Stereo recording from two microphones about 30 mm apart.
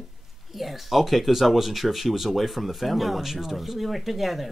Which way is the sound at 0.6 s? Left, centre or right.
Centre.